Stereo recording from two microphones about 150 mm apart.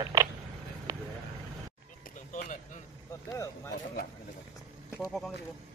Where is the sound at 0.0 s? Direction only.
25° right (ahead or behind).